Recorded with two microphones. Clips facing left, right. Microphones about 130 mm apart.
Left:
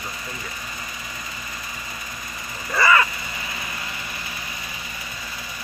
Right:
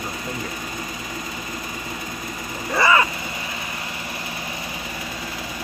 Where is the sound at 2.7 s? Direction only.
20° right (ahead or behind).